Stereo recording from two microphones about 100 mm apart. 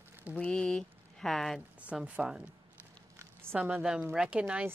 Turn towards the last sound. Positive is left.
turn(degrees=-10)  # may be behind; listen again after turning